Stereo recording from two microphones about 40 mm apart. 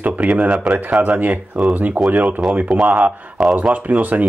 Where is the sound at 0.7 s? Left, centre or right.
Centre.